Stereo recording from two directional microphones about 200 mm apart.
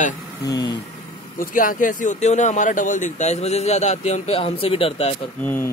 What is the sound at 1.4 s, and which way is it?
Speech, 45° left (ahead or behind).